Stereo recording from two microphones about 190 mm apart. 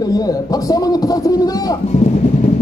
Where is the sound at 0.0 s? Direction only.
20° left (ahead or behind).